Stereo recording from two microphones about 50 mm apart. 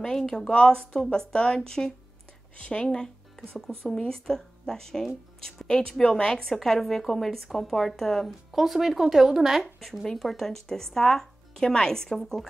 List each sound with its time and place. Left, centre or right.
0.5 s speech: centre
6.3 s speech: centre
8.3 s speech: centre
10.0 s speech: centre